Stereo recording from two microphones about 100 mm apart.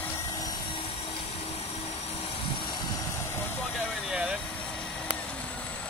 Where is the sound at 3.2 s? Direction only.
20° left (ahead or behind).